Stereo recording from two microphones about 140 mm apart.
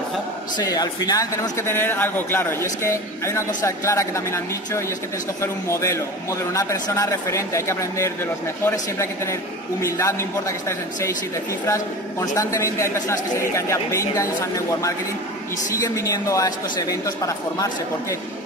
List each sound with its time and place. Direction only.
0.6 s a man's voice: 25° left (ahead or behind)
15.8 s a man's voice: 25° left (ahead or behind)